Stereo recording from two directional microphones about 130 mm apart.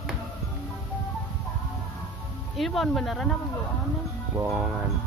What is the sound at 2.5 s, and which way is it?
Speech, centre (ahead or behind).